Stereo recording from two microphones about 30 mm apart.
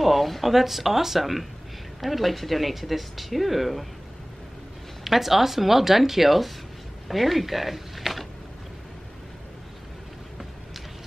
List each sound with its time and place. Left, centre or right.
0.0 s speech: centre
5.0 s speech: centre